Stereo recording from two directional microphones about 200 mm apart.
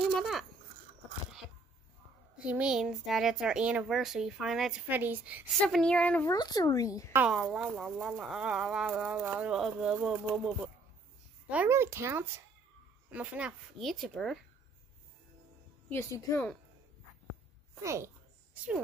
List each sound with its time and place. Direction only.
0.2 s speech: centre (ahead or behind)
2.3 s speech: 5° right (ahead or behind)
5.6 s speech: 5° left (ahead or behind)
6.3 s speech: 20° left (ahead or behind)
7.2 s speech: 5° right (ahead or behind)
15.9 s speech: 10° left (ahead or behind)
17.8 s a sound: 15° right (ahead or behind)